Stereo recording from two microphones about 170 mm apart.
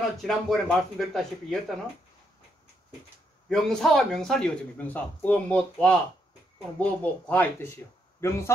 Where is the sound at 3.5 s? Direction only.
Centre (ahead or behind).